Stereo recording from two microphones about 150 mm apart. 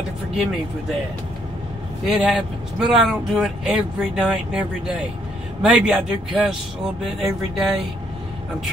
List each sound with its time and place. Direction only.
2.0 s speech: 5° right (ahead or behind)